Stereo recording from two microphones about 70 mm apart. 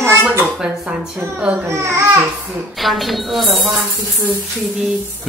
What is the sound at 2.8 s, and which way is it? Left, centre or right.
Speech, centre.